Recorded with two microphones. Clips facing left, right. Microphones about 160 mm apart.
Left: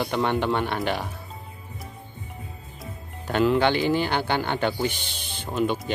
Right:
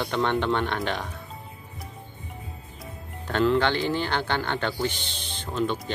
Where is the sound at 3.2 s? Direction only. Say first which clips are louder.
Left 2 dB; 10° left (ahead or behind).